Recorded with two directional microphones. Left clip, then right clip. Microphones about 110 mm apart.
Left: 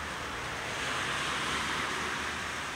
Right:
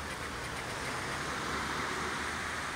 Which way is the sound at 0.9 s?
45° left (ahead or behind).